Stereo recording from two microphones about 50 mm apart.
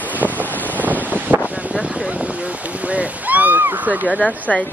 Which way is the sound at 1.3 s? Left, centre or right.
Right.